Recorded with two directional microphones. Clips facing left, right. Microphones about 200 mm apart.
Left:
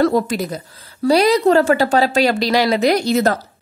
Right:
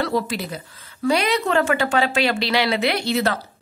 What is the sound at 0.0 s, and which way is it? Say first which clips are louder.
Speech: left 7 dB; 45° left (ahead or behind).